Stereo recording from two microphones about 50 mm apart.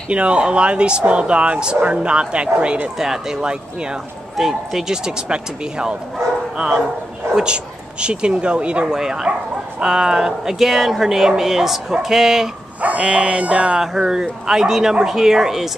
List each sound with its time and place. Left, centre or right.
0.1 s speech: right
3.0 s speech: centre
4.4 s speech: centre
12.8 s speech: right
13.7 s speech: centre